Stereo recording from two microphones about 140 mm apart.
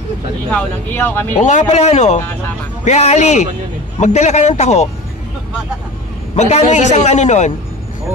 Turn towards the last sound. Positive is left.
turn(degrees=55)  # may be behind; listen again after turning